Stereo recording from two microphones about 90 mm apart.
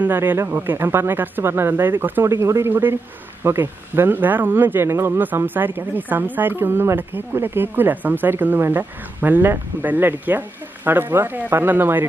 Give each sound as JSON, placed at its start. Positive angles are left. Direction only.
{"t": 0.0, "sound": "speech", "side_deg": -20}